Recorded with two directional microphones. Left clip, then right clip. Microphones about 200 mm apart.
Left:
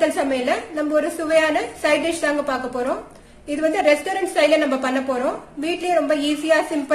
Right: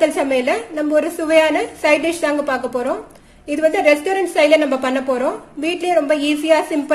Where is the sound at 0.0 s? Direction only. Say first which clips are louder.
Right 4 dB; 30° right (ahead or behind).